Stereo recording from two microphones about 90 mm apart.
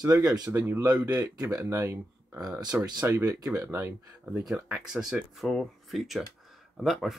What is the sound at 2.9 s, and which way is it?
Speech, 25° right (ahead or behind).